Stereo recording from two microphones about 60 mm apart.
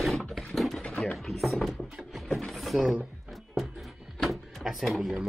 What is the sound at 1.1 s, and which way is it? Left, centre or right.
Speech, centre.